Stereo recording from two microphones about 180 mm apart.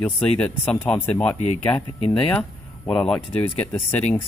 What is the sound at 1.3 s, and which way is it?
Speech, 40° left (ahead or behind).